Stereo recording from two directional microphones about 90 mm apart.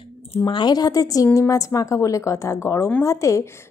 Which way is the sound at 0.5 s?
55° left (ahead or behind).